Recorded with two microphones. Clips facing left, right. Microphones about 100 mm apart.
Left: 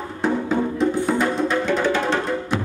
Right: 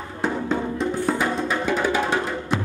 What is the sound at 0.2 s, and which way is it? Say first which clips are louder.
Music: left 3 dB; centre (ahead or behind).